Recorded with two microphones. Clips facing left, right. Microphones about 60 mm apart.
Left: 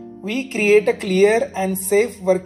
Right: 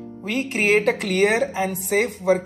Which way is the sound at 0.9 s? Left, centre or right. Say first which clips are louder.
Left 3 dB; right.